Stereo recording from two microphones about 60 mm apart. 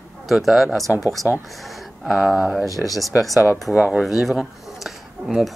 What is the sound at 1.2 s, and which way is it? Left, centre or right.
Speech, left.